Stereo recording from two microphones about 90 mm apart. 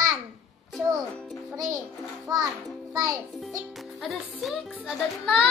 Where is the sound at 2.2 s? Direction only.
45° right (ahead or behind).